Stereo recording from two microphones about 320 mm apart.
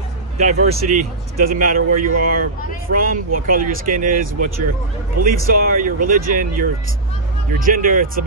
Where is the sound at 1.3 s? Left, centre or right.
Right.